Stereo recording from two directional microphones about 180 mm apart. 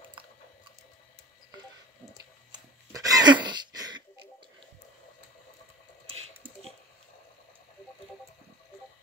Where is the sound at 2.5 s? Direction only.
20° right (ahead or behind).